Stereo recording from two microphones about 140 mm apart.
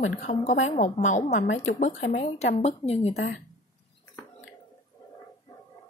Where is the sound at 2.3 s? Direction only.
50° left (ahead or behind).